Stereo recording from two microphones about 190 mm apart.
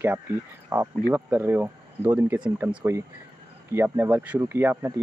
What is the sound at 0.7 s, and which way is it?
Speech, 20° right (ahead or behind).